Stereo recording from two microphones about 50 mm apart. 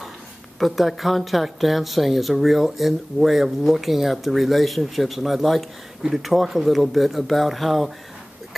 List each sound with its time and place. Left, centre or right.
0.6 s speech: centre